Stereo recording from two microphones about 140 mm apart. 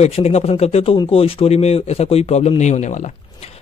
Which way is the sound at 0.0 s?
50° left (ahead or behind).